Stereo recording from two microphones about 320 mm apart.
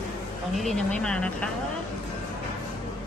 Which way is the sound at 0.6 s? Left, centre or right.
Centre.